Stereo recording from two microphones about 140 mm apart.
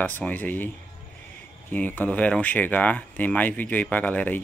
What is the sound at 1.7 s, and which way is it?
Speech, 10° left (ahead or behind).